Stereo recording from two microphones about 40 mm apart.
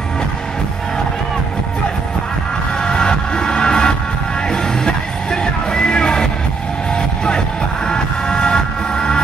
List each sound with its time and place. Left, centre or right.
2.8 s music: left
7.2 s music: centre